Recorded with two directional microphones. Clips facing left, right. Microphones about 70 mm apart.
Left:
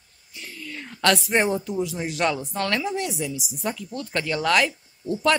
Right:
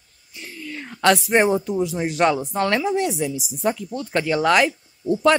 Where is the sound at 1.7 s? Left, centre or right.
Right.